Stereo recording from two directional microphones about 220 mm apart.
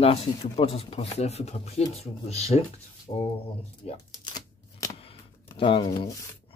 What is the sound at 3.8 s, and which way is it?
Shuffling cards, 20° left (ahead or behind).